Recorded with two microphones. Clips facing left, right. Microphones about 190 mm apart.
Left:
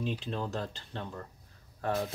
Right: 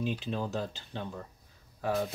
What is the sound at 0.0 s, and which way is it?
Speech, 5° right (ahead or behind).